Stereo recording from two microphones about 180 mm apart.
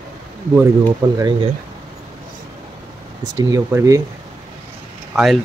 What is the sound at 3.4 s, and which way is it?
Speech, 20° right (ahead or behind).